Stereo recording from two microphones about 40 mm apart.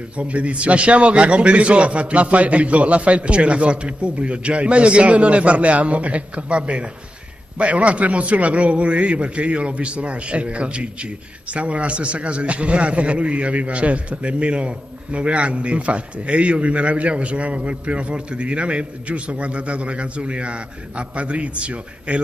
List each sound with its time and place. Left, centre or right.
0.2 s a man's voice: right